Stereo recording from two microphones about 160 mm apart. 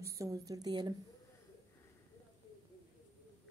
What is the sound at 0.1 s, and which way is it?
Speech, 20° right (ahead or behind).